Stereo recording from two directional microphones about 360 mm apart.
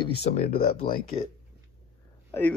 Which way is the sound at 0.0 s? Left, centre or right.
Centre.